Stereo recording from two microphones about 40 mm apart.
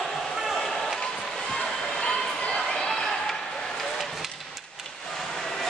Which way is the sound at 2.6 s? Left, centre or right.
Centre.